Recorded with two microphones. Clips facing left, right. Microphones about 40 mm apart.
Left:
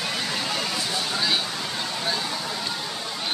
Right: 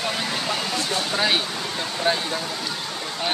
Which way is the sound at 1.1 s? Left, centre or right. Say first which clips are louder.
Right 4 dB; right.